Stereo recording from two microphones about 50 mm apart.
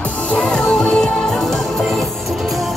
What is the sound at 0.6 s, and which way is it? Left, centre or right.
Music, centre.